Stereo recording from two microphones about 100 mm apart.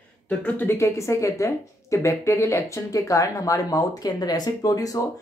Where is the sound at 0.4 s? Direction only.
20° left (ahead or behind).